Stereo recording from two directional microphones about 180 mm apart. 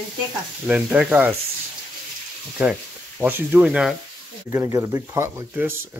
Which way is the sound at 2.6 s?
5° right (ahead or behind).